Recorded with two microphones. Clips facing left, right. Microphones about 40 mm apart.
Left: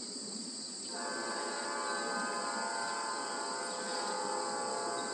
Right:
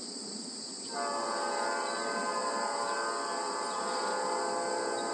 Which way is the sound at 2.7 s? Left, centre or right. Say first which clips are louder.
Right 4 dB; right.